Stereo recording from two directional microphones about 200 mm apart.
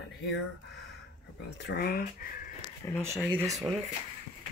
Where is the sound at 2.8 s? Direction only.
15° left (ahead or behind).